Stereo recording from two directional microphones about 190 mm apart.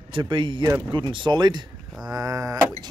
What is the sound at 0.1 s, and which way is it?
Speech, 25° right (ahead or behind).